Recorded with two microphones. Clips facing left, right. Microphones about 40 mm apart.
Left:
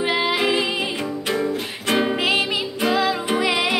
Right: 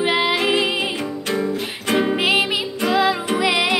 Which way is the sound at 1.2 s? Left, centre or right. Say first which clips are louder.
Right 1 dB; centre.